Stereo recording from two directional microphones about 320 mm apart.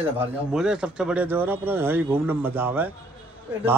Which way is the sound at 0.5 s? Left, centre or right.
Centre.